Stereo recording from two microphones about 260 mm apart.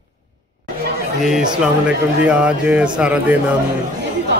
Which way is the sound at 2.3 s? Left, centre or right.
Centre.